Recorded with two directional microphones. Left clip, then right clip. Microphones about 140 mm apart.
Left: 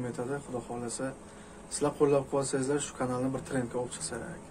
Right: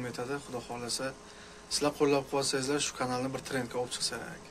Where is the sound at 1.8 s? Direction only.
25° right (ahead or behind).